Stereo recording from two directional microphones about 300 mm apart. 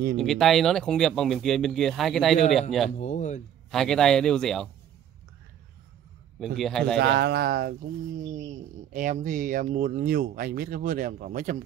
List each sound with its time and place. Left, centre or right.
0.2 s speech: centre
3.0 s a sound: left
3.7 s speech: centre
6.4 s speech: centre
7.0 s speech: right